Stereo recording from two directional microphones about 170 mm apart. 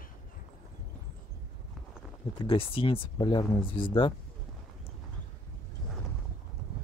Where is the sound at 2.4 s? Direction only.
30° left (ahead or behind).